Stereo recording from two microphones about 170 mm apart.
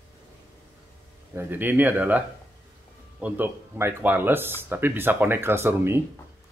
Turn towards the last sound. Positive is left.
turn(degrees=-15)  # may be behind; listen again after turning